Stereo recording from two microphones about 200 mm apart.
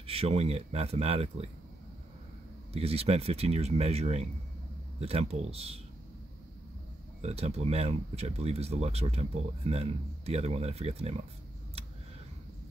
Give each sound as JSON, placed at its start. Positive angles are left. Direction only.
{"t": 0.0, "sound": "speech", "side_deg": -30}
{"t": 2.7, "sound": "speech", "side_deg": -30}
{"t": 7.2, "sound": "speech", "side_deg": -30}